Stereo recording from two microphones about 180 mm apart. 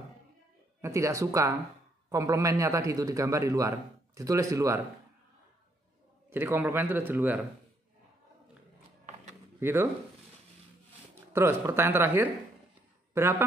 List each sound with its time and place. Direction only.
0.7 s a man's voice: 15° right (ahead or behind)
6.3 s speech: 10° right (ahead or behind)
9.6 s speech: 10° right (ahead or behind)
11.3 s speech: 15° right (ahead or behind)